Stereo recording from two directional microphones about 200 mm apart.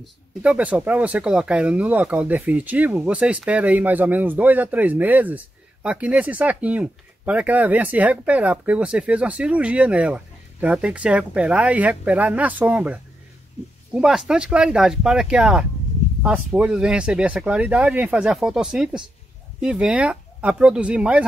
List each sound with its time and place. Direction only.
0.0 s speech: 5° right (ahead or behind)